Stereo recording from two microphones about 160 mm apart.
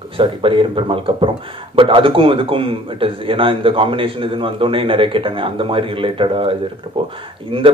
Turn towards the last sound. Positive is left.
turn(degrees=-35)  # may be behind; listen again after turning